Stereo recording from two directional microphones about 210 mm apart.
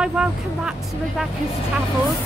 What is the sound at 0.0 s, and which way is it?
A woman's voice, 5° right (ahead or behind).